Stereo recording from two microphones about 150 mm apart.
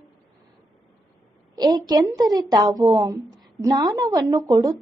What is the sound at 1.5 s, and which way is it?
A woman's voice, 25° right (ahead or behind).